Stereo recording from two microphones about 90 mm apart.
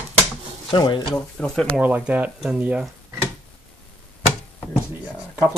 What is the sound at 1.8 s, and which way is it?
Speech, 15° right (ahead or behind).